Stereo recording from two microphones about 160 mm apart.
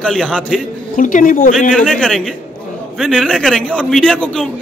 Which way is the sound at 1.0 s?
55° left (ahead or behind).